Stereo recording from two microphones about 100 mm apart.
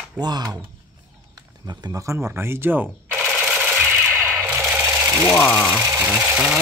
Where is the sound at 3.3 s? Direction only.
15° right (ahead or behind).